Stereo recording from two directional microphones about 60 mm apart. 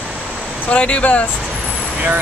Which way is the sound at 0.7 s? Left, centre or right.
Centre.